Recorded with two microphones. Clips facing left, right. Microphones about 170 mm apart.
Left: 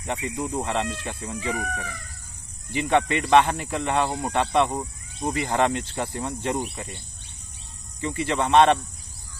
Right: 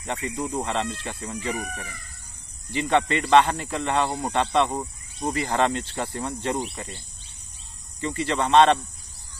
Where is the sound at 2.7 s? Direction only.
15° left (ahead or behind).